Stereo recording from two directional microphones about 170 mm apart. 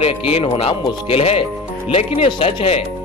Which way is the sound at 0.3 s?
35° left (ahead or behind).